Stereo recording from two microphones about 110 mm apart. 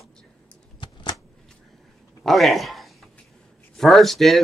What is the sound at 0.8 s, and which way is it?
Shuffling cards, 45° left (ahead or behind).